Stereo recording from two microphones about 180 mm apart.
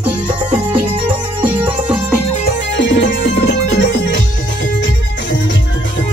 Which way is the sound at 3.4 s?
70° left (ahead or behind).